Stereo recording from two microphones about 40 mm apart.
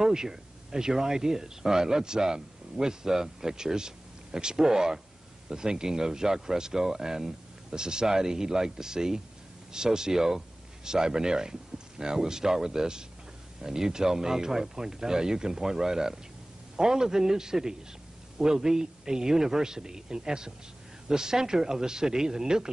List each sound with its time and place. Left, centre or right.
0.0 s speech: centre